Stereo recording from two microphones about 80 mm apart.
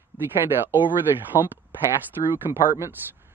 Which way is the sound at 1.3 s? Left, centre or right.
Left.